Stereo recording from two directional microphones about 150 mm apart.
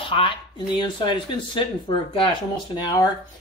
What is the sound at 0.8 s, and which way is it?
Speech, 30° left (ahead or behind).